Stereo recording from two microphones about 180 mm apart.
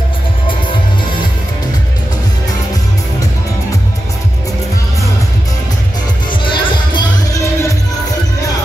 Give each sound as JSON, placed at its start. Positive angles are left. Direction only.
{"t": 6.4, "sound": "music", "side_deg": 25}